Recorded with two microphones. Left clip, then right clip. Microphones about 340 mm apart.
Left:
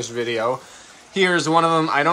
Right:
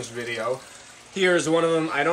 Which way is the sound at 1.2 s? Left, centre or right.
Left.